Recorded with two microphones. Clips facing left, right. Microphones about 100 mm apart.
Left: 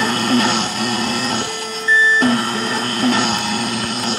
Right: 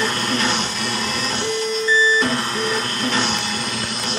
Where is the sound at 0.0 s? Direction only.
55° left (ahead or behind).